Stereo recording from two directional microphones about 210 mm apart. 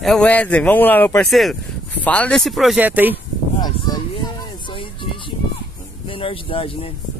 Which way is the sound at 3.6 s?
20° left (ahead or behind).